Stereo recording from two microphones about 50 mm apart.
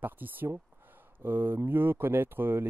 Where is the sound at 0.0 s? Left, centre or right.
Right.